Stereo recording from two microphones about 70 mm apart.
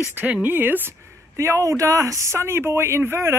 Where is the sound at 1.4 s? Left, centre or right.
Right.